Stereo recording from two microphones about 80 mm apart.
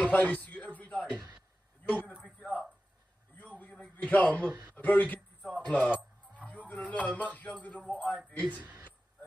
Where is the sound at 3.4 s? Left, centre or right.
Centre.